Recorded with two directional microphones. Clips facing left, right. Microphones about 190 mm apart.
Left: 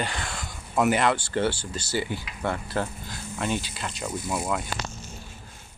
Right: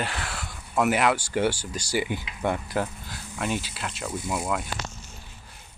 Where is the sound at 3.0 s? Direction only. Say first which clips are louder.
Left 1 dB; 5° right (ahead or behind).